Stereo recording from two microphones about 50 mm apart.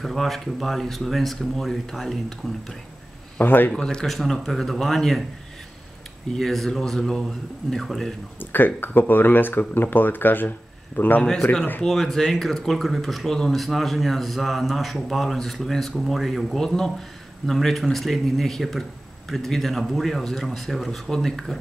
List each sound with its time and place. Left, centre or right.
0.0 s speech: centre
3.3 s speech: left
3.7 s speech: centre
6.3 s speech: centre
8.4 s speech: left
11.8 s speech: centre